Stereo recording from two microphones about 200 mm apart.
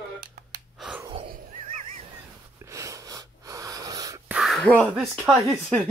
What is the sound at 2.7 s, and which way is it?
Wheeze, 15° right (ahead or behind).